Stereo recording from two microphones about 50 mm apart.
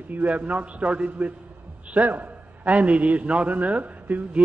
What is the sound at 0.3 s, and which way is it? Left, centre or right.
A man's voice, right.